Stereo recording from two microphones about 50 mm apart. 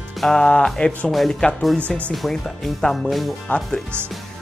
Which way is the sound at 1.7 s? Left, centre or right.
Left.